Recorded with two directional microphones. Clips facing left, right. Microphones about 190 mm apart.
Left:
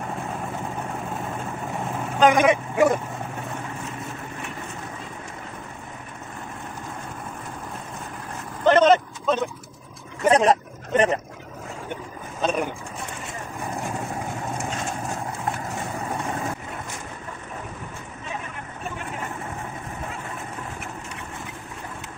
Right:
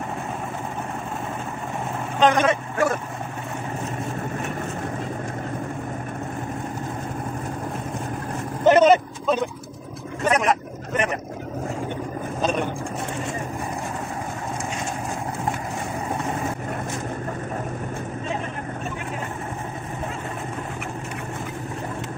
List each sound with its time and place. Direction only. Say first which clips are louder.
2.1 s speech: left 1 dB; 10° left (ahead or behind)
8.6 s vehicle: right 2 dB; 10° right (ahead or behind)
10.2 s hubbub: left 3 dB; 30° left (ahead or behind)
12.4 s vehicle: even; centre (ahead or behind)